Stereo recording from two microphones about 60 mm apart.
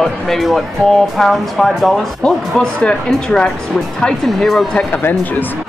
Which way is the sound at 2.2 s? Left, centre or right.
Centre.